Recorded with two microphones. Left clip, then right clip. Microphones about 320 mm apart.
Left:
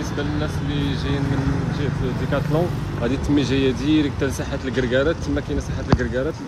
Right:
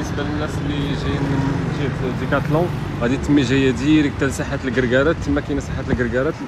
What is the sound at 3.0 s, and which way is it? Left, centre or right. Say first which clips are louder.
Speech: right 3 dB; right.